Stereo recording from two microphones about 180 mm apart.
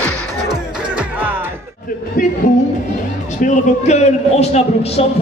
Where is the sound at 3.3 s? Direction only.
40° left (ahead or behind).